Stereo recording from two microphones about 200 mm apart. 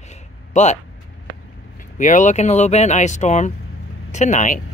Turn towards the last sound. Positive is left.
turn(degrees=35)  # may be behind; listen again after turning